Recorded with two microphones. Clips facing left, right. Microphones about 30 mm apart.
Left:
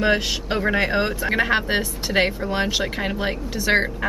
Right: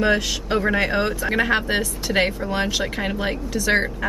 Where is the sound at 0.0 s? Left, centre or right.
Centre.